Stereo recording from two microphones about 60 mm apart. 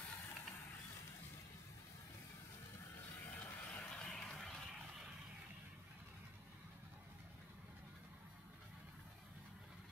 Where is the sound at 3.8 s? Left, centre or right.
Centre.